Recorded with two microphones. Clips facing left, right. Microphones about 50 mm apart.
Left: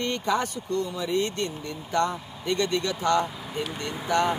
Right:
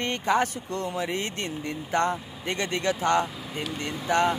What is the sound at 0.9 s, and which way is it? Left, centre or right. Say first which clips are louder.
Speech: left 2 dB; right.